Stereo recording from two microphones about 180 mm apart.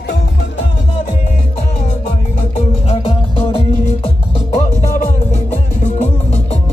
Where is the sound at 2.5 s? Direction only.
30° left (ahead or behind).